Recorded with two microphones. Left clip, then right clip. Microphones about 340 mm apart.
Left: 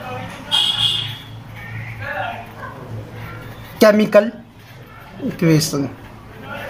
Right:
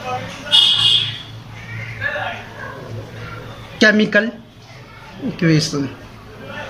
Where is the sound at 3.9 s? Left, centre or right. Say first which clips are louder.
Left 3 dB; centre.